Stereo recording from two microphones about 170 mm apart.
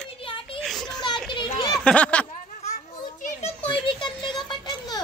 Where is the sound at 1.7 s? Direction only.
5° left (ahead or behind).